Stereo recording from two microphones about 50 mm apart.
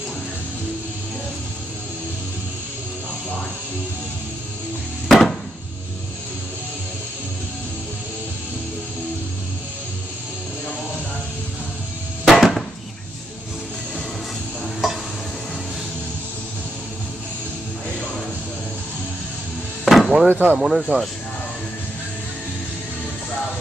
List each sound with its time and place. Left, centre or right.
5.0 s chopping: centre
12.3 s a sound: centre
19.8 s chop: centre
20.2 s speech: right
20.5 s speech: centre